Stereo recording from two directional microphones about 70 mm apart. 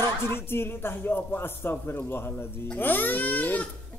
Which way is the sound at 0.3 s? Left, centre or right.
Left.